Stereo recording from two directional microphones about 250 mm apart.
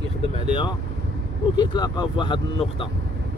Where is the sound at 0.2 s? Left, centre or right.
Centre.